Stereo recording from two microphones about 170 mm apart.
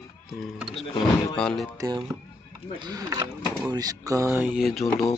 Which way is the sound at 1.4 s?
5° left (ahead or behind).